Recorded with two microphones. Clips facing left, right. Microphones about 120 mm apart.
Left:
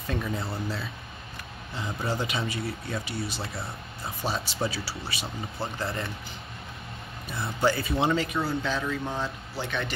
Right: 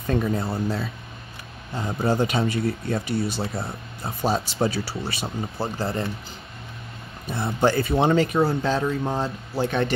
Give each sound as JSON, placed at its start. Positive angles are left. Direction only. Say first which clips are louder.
{"t": 0.0, "sound": "speech", "louder": "right 7 dB", "side_deg": -45}
{"t": 5.6, "sound": "speech", "louder": "right 5 dB", "side_deg": -30}
{"t": 7.2, "sound": "speech", "louder": "right 4 dB", "side_deg": -50}
{"t": 8.7, "sound": "speech", "louder": "right 6 dB", "side_deg": -35}